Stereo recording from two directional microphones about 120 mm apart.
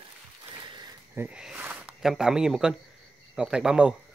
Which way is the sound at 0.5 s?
40° right (ahead or behind).